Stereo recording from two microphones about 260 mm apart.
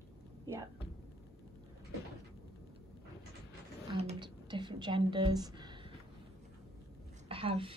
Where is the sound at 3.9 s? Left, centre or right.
Right.